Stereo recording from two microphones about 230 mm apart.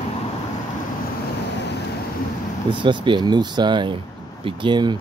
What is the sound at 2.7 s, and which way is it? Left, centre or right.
Speech, right.